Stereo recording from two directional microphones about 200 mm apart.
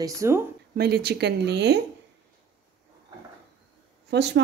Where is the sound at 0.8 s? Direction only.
55° right (ahead or behind).